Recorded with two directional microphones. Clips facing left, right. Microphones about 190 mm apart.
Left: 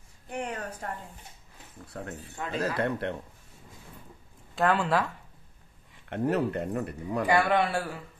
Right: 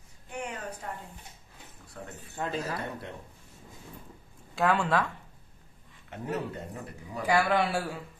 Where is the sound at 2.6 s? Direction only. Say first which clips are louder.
Left 7 dB; 65° left (ahead or behind).